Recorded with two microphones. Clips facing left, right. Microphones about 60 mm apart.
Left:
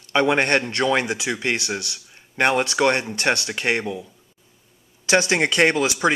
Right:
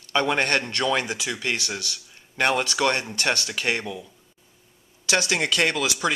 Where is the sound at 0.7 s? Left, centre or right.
Left.